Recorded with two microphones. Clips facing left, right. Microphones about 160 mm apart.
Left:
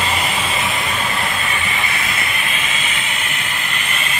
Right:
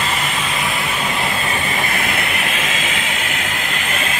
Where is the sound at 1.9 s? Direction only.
55° right (ahead or behind).